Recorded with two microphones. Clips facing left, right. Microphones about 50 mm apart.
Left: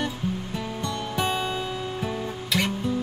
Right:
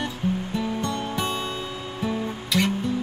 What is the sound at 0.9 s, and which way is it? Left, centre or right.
Music, right.